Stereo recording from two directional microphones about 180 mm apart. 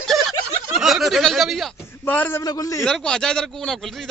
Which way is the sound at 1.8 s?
10° left (ahead or behind).